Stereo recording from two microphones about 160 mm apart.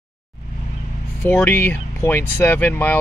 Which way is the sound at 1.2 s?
10° left (ahead or behind).